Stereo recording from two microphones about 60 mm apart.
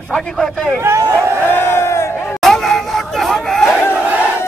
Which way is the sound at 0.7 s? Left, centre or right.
Right.